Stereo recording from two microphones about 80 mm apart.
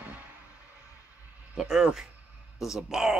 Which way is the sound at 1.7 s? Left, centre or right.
Centre.